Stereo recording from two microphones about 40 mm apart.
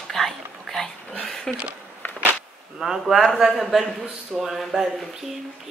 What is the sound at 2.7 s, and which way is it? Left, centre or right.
A man's voice, centre.